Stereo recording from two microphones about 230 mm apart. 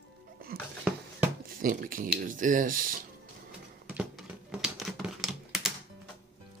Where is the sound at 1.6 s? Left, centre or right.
Right.